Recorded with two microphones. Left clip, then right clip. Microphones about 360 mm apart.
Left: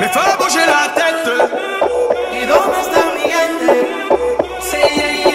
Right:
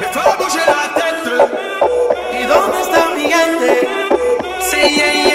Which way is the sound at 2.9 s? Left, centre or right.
Right.